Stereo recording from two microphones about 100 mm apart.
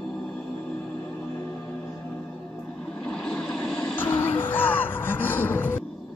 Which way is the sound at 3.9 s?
20° left (ahead or behind).